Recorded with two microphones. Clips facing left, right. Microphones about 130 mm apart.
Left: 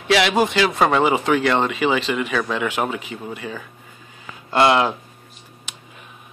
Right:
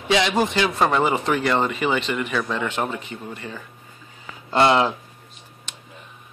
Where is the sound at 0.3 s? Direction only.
5° left (ahead or behind).